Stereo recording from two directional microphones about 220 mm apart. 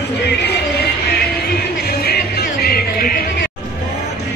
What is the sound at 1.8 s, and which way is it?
Music, 45° left (ahead or behind).